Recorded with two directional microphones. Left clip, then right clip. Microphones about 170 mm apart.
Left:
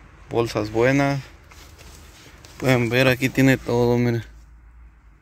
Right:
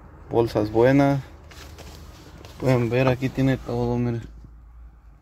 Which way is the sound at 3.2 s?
30° left (ahead or behind).